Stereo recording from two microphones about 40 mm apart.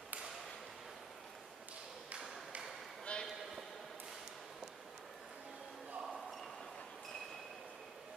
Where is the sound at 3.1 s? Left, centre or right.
Left.